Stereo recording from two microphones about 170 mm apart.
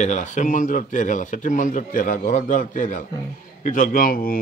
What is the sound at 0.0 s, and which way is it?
A man's voice, 45° left (ahead or behind).